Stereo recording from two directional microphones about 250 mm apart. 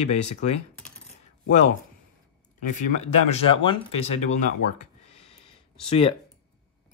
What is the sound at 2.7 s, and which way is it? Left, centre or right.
Speech, left.